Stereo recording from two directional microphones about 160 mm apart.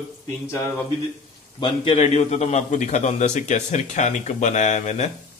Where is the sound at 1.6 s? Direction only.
35° left (ahead or behind).